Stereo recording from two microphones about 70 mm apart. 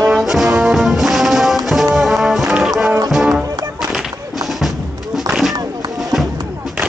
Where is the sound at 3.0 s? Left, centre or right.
Centre.